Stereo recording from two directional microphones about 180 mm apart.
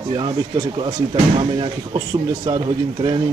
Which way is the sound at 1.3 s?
25° right (ahead or behind).